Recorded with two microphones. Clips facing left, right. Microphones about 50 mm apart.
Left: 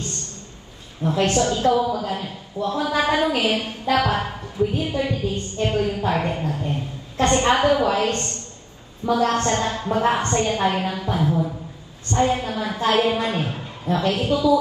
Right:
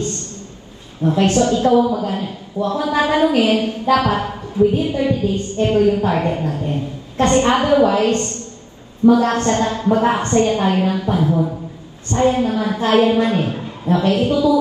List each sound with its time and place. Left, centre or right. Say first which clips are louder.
1.2 s a woman's voice: right 3 dB; right